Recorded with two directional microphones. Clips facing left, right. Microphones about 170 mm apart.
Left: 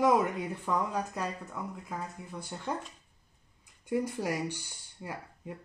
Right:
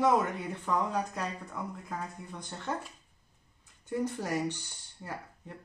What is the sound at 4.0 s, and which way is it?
A woman's voice, 10° left (ahead or behind).